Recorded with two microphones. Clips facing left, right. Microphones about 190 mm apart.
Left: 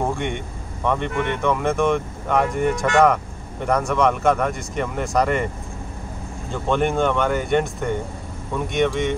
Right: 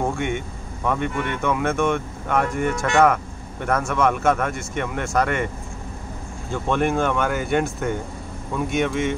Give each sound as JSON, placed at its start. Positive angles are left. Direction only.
{"t": 0.1, "sound": "vehicle", "side_deg": -5}
{"t": 0.8, "sound": "speech", "side_deg": -5}
{"t": 6.5, "sound": "speech", "side_deg": 0}